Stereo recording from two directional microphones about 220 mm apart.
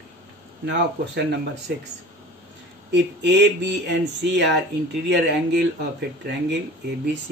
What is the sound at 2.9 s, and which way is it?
Speech, 55° right (ahead or behind).